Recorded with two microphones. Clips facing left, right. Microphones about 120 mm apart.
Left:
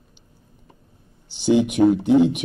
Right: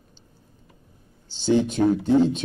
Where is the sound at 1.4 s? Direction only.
15° left (ahead or behind).